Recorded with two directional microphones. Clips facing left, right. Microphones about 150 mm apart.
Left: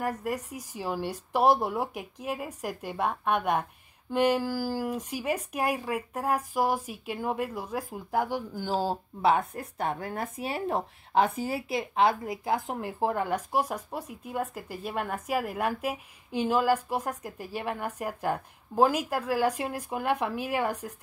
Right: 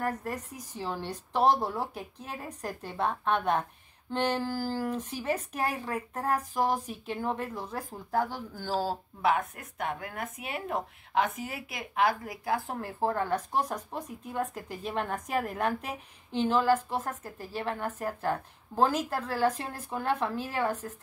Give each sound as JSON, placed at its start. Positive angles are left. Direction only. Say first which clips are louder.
{"t": 0.0, "sound": "speech", "louder": "left 2 dB", "side_deg": 10}